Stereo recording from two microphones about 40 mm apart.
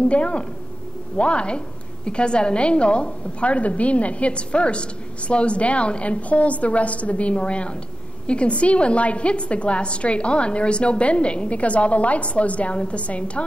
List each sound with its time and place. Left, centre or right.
0.1 s a woman's voice: left